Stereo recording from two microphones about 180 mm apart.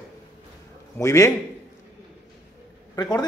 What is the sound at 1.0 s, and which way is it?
Speech, 15° left (ahead or behind).